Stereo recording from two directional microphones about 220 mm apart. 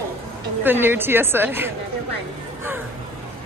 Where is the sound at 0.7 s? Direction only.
10° right (ahead or behind).